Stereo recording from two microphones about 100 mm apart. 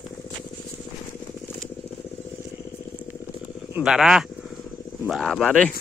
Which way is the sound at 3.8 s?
5° right (ahead or behind).